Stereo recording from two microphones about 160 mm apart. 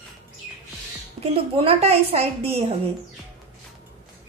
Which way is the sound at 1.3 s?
35° right (ahead or behind).